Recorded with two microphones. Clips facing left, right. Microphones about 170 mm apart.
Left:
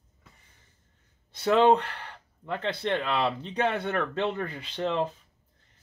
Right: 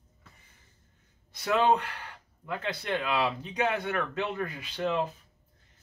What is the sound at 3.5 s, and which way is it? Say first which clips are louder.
Speech: left 2 dB; 30° left (ahead or behind).